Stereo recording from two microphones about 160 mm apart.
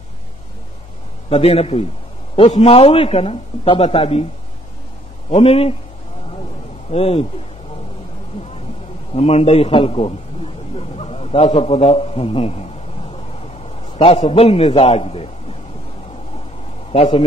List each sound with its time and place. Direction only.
1.3 s a man's voice: 40° left (ahead or behind)
5.3 s a man's voice: 40° left (ahead or behind)
6.9 s a man's voice: 40° left (ahead or behind)
9.1 s a man's voice: 40° left (ahead or behind)
13.9 s a man's voice: 40° left (ahead or behind)
16.9 s a man's voice: 40° left (ahead or behind)